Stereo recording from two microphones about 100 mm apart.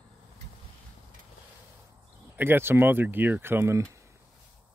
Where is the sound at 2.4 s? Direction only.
20° right (ahead or behind).